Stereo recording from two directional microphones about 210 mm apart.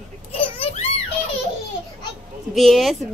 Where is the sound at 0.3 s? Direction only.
30° left (ahead or behind).